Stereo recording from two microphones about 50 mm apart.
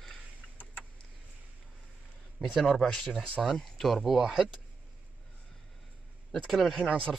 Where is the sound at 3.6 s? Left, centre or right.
Centre.